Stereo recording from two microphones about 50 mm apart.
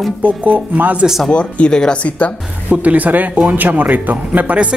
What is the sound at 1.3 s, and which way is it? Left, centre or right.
Speech, centre.